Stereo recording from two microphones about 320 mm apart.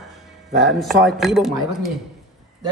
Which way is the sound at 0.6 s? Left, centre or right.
Centre.